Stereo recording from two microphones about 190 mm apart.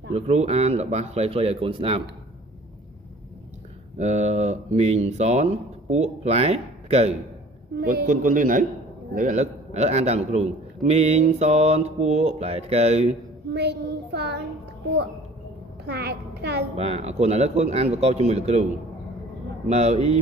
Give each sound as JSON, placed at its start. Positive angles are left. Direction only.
{"t": 0.1, "sound": "a man's voice", "side_deg": -35}
{"t": 4.0, "sound": "a man's voice", "side_deg": -35}
{"t": 7.8, "sound": "a man's voice", "side_deg": -50}
{"t": 13.5, "sound": "child singing", "side_deg": -60}
{"t": 15.8, "sound": "a woman's voice", "side_deg": -60}
{"t": 16.7, "sound": "a man's voice", "side_deg": -35}
{"t": 19.7, "sound": "a man's voice", "side_deg": -35}